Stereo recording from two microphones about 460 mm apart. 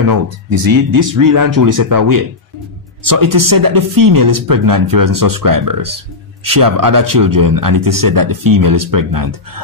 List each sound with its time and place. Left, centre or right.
0.0 s speech: right